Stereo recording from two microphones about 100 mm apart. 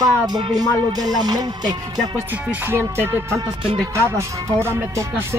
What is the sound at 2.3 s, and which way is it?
Music, 15° right (ahead or behind).